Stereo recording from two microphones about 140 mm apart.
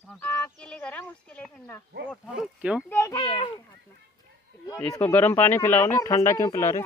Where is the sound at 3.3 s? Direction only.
35° left (ahead or behind).